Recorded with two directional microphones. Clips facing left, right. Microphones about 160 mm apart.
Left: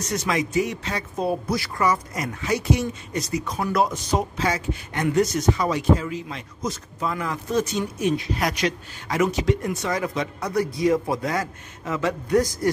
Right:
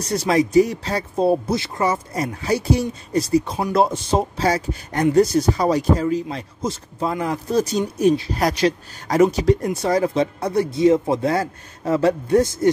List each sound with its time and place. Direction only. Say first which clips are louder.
0.0 s speech: right 6 dB; 35° right (ahead or behind)